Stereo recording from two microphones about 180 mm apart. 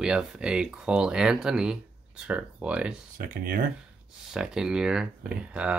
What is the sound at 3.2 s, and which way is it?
Speech, 55° right (ahead or behind).